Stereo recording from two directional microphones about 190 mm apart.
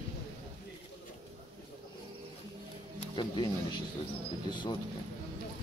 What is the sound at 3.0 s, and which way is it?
Speech, 25° left (ahead or behind).